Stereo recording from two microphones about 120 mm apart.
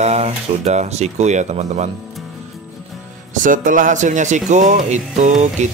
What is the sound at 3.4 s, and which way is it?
Speech, 90° right.